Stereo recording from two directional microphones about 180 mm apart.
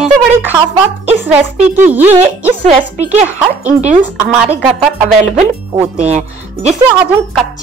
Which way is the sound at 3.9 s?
10° right (ahead or behind).